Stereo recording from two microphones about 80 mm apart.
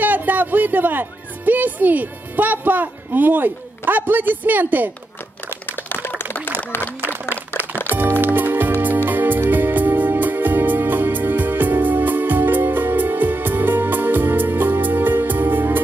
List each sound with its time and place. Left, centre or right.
0.0 s speech: right
7.0 s speech: right
8.2 s music: right